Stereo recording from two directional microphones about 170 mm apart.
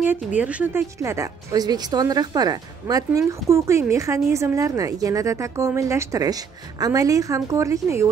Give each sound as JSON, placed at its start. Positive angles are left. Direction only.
{"t": 0.0, "sound": "a woman's voice", "side_deg": -10}